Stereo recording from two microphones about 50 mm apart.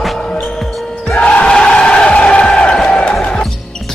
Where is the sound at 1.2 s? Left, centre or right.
Left.